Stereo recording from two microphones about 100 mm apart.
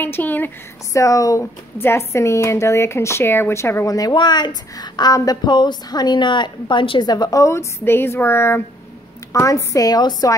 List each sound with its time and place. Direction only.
0.0 s a woman's voice: 20° left (ahead or behind)
0.9 s a woman's voice: 35° left (ahead or behind)